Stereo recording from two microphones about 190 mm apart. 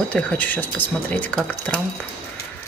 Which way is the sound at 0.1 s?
10° left (ahead or behind).